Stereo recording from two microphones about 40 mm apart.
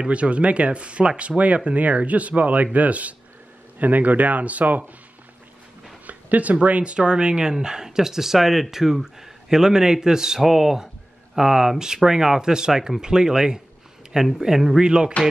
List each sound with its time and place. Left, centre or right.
0.0 s speech: right
6.0 s speech: right; by 14.8 s centre
14.8 s speech: right